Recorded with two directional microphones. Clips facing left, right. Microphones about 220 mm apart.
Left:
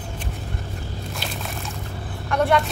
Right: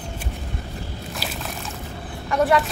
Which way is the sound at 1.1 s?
Centre (ahead or behind).